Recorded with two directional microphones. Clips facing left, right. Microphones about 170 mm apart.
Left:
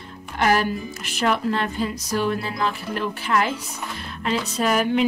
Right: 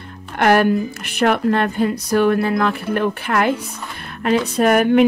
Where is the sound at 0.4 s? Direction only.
60° right (ahead or behind).